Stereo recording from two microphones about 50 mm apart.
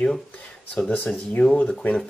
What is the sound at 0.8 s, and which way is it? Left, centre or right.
Speech, left.